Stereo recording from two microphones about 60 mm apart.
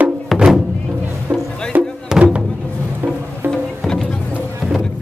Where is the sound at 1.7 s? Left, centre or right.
Right.